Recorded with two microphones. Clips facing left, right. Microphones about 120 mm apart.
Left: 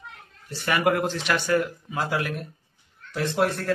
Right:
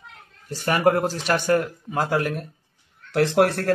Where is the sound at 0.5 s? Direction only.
40° right (ahead or behind).